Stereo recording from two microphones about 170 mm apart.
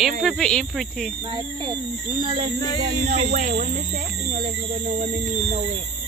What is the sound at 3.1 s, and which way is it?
Speech, 45° right (ahead or behind).